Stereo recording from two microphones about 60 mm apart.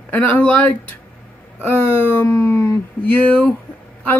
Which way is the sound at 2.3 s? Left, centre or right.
Left.